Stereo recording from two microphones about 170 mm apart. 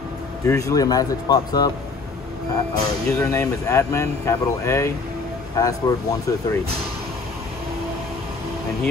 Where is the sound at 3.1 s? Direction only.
15° left (ahead or behind).